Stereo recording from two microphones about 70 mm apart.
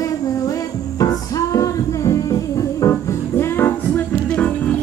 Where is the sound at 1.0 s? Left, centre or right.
Left.